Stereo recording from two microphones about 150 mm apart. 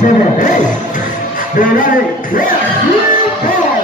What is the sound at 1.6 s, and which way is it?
Speech, 60° left (ahead or behind).